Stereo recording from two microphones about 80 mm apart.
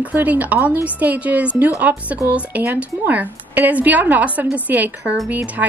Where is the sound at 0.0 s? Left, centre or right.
Right.